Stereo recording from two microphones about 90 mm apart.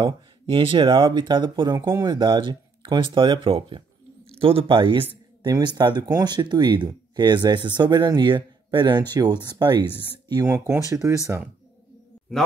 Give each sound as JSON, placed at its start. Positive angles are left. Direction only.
{"t": 0.5, "sound": "speech", "side_deg": -70}
{"t": 1.7, "sound": "speech", "side_deg": -30}
{"t": 2.0, "sound": "speech", "side_deg": -60}
{"t": 5.4, "sound": "speech", "side_deg": -55}
{"t": 11.0, "sound": "speech", "side_deg": -30}